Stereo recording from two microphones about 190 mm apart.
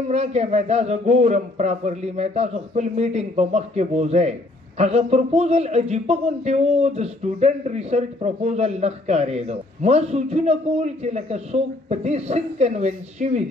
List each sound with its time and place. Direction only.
0.1 s a man's voice: 35° right (ahead or behind)